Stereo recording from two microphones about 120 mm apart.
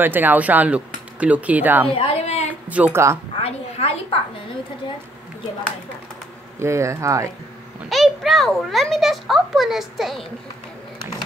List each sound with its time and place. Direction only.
0.0 s speech: 15° right (ahead or behind)
2.0 s speech: 60° left (ahead or behind)
2.7 s speech: 10° right (ahead or behind)
3.3 s a sound: 60° left (ahead or behind)
6.6 s speech: 25° right (ahead or behind)
7.9 s a child's voice: centre (ahead or behind)